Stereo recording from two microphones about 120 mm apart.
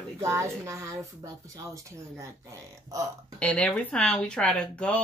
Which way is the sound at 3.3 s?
5° left (ahead or behind).